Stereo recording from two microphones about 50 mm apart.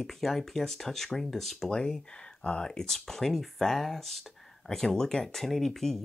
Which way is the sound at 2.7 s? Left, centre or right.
Centre.